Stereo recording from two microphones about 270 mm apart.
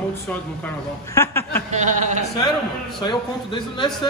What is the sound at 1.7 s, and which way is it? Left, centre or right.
Speech, right.